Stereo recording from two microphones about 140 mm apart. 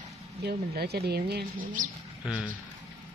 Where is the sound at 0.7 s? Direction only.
90° right.